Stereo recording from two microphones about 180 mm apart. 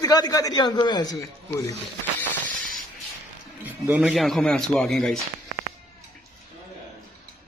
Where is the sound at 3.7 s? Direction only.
10° right (ahead or behind).